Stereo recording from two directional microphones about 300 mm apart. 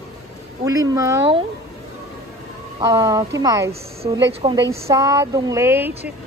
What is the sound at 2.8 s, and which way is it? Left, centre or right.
Speech, centre.